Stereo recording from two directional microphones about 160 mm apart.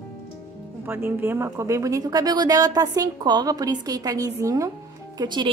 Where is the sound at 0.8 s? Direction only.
15° right (ahead or behind).